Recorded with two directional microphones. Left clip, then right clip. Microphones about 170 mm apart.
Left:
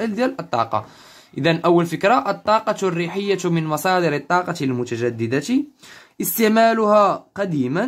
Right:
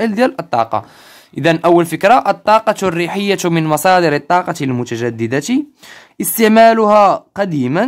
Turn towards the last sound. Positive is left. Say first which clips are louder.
# right 6 dB
turn(degrees=-35)  # may be behind; listen again after turning